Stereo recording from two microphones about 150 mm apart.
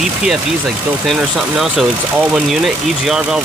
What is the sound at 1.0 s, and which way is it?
Speech, centre (ahead or behind).